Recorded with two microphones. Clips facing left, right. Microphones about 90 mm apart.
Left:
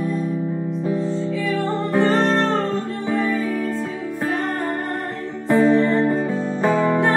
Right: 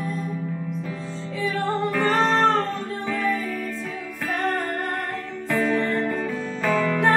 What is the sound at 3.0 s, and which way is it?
Music, 30° left (ahead or behind).